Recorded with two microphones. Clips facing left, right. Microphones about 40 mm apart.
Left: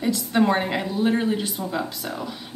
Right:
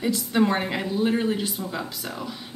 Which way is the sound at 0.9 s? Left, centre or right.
Centre.